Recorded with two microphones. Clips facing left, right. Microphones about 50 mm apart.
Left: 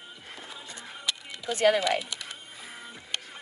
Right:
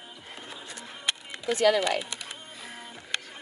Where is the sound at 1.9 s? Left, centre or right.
Right.